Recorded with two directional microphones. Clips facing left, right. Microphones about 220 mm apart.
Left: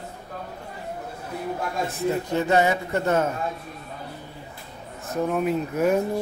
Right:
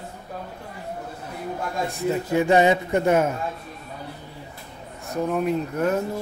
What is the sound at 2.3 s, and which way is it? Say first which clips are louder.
Speech: right 4 dB; 15° right (ahead or behind).